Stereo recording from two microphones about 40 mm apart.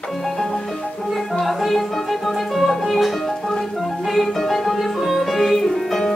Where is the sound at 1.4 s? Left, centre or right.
Centre.